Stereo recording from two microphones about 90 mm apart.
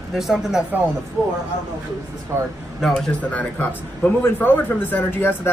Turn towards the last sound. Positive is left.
turn(degrees=25)  # may be behind; listen again after turning